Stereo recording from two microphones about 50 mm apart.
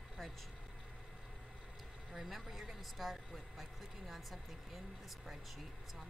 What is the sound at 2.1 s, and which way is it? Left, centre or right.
A woman's voice, centre.